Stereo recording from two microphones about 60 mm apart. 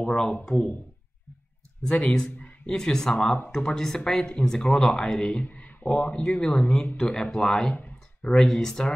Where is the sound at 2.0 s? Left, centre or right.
Centre.